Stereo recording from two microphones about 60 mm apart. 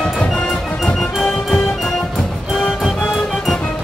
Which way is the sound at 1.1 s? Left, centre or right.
Centre.